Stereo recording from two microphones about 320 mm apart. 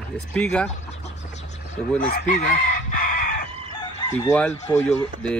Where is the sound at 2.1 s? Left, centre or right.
Left.